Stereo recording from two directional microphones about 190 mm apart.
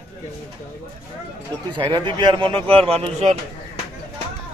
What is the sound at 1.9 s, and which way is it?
Speech, 25° right (ahead or behind).